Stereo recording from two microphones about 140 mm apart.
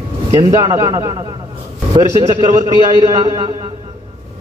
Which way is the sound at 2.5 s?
25° right (ahead or behind).